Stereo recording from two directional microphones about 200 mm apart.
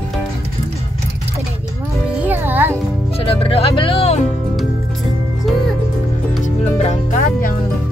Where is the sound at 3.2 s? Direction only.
30° left (ahead or behind).